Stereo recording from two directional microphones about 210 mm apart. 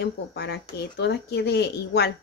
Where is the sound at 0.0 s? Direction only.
55° left (ahead or behind).